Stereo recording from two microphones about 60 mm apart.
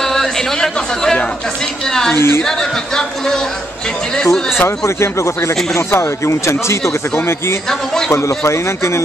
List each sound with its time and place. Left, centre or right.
0.0 s a sound: centre
1.9 s speech: centre
2.1 s speech: left
2.4 s speech: centre
4.6 s speech: left